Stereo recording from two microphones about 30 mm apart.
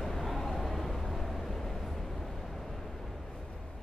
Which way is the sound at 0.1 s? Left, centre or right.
Centre.